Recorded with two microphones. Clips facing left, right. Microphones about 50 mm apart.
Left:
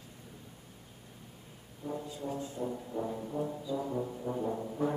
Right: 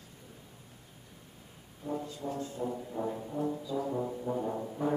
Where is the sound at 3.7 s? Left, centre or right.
Centre.